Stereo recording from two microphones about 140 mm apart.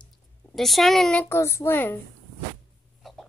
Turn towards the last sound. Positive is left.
turn(degrees=0)  # may be behind; listen again after turning